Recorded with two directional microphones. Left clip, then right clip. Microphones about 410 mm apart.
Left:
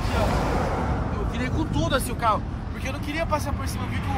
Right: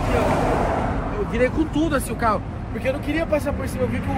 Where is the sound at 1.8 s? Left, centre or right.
Left.